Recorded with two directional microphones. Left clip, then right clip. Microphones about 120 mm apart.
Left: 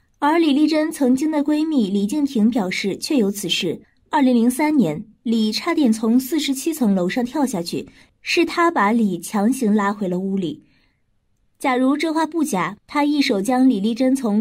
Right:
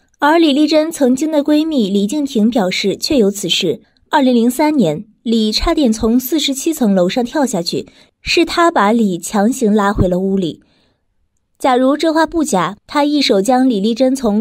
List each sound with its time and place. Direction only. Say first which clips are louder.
0.2 s a woman's voice: right 6 dB; 45° right (ahead or behind)
11.6 s a woman's voice: right 7 dB; 40° right (ahead or behind)